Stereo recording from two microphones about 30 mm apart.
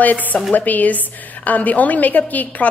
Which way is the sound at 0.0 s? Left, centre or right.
Left.